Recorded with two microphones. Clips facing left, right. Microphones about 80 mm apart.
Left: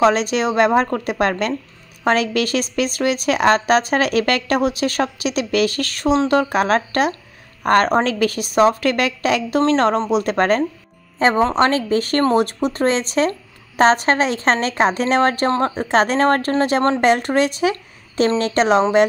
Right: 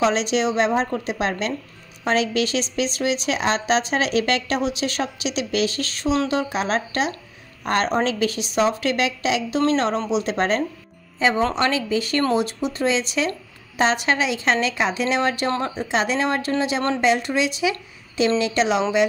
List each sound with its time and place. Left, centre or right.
0.0 s a woman's voice: left